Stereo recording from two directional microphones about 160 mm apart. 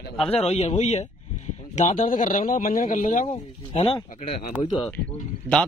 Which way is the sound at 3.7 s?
30° left (ahead or behind).